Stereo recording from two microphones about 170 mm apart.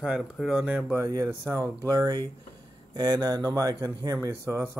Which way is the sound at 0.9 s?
20° right (ahead or behind).